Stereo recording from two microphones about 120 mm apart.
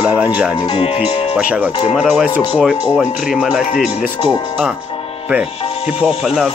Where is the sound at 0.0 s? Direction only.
10° right (ahead or behind).